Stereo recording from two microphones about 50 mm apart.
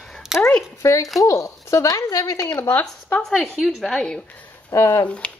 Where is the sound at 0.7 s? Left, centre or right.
Left.